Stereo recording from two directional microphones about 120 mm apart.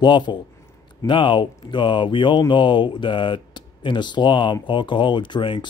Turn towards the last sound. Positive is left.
turn(degrees=45)  # may be behind; listen again after turning